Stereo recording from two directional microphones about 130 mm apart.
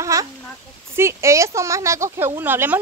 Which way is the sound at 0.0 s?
25° right (ahead or behind).